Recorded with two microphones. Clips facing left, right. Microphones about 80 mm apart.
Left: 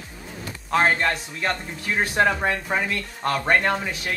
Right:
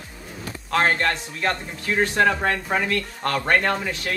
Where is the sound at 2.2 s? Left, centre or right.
Left.